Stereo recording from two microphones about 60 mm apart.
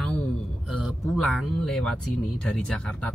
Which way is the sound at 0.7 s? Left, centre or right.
Centre.